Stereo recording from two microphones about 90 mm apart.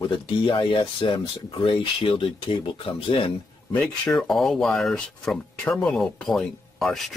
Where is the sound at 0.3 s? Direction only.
70° left (ahead or behind).